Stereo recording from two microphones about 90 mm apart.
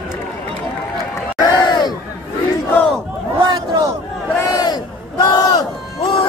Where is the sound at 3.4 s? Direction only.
55° right (ahead or behind).